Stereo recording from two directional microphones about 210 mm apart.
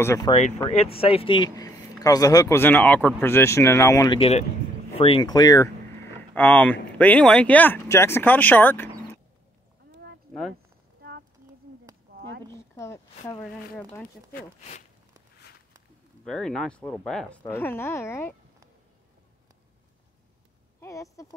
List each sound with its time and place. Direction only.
0.0 s speech: 15° left (ahead or behind)
0.7 s speech: 30° left (ahead or behind)
4.2 s speech: 30° left (ahead or behind); by 9.2 s 10° left (ahead or behind)
11.0 s a sound: 50° right (ahead or behind)
12.5 s speech: 15° left (ahead or behind)
16.3 s speech: 5° left (ahead or behind)
20.8 s speech: 15° left (ahead or behind)